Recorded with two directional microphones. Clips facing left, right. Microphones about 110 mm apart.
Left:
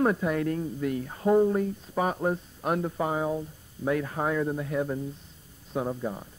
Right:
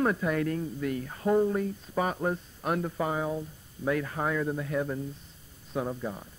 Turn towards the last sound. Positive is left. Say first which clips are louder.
# left 2 dB
turn(degrees=20)  # may be behind; listen again after turning